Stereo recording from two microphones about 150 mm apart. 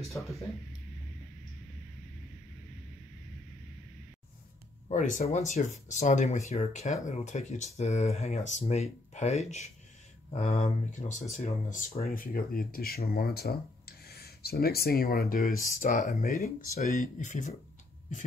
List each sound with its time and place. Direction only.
0.1 s speech: centre (ahead or behind)
4.8 s speech: 55° left (ahead or behind)
12.1 s speech: 75° left (ahead or behind)
16.4 s speech: 50° left (ahead or behind)